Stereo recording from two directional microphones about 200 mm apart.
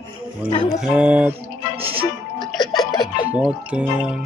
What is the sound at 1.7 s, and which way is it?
Music, 30° right (ahead or behind).